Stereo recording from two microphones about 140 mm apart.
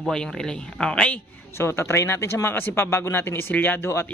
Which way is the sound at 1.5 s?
20° left (ahead or behind).